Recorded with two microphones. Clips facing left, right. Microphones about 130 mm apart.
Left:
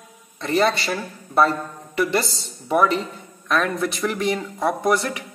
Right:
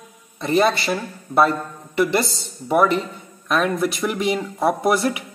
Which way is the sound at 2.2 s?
Centre (ahead or behind).